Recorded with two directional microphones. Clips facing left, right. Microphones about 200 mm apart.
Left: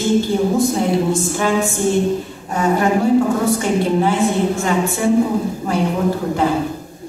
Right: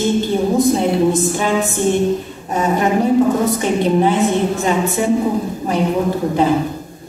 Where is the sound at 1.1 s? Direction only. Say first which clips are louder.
Right 1 dB; 20° right (ahead or behind).